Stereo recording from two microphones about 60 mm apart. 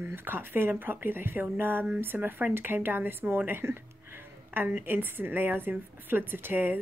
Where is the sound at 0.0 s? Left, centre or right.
Right.